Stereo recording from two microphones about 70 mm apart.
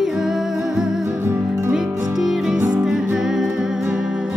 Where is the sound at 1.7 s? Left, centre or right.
Centre.